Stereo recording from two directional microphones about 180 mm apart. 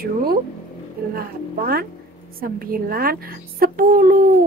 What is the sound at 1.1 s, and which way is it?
Speech, 55° right (ahead or behind).